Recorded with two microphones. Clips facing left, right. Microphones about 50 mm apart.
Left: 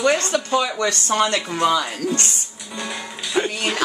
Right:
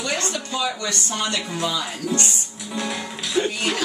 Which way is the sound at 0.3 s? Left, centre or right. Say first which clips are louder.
Left 5 dB; left.